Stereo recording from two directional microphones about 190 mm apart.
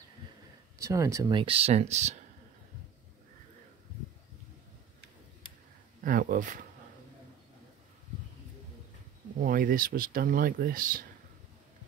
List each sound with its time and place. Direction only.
0.7 s speech: 15° right (ahead or behind); by 2.1 s 35° right (ahead or behind)
6.0 s speech: 45° right (ahead or behind)
9.4 s speech: 45° right (ahead or behind)